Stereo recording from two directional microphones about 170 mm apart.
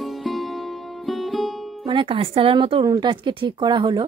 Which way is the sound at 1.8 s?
30° right (ahead or behind).